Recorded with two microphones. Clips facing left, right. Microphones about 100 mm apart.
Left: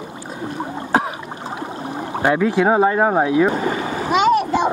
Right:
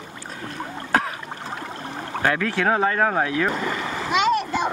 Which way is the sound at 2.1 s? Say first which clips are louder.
Left 6 dB; 15° left (ahead or behind).